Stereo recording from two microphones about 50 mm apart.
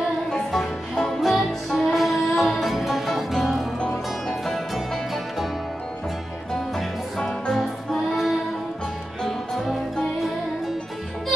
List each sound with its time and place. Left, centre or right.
0.5 s music: centre
4.7 s music: centre
7.2 s music: centre